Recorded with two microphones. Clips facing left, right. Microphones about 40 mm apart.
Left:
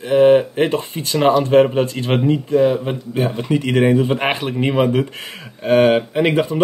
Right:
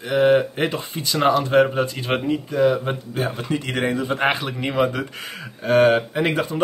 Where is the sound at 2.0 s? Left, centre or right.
Centre.